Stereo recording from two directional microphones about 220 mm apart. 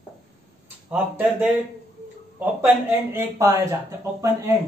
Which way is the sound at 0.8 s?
5° right (ahead or behind).